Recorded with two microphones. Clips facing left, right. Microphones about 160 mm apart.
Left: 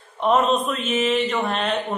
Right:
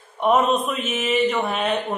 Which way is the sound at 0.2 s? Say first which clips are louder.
Even; centre (ahead or behind).